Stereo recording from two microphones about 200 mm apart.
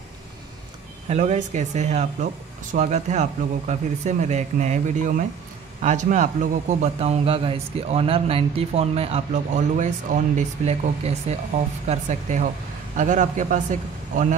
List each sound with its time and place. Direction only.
1.0 s a man's voice: 35° right (ahead or behind)